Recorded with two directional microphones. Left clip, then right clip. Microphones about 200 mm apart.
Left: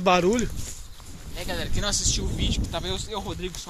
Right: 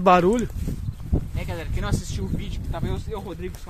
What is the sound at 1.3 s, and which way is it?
Speech, 40° right (ahead or behind).